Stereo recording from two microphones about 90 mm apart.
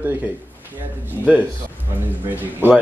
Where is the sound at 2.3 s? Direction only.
20° right (ahead or behind).